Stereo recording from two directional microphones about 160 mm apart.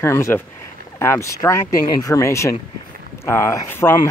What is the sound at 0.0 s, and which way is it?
Speech, 15° left (ahead or behind).